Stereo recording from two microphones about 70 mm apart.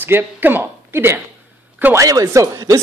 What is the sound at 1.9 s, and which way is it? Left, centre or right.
Speech, right.